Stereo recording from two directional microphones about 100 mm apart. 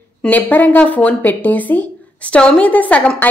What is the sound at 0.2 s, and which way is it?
A woman's voice, 15° left (ahead or behind).